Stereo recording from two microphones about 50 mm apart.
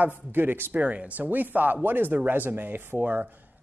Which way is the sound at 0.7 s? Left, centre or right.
Right.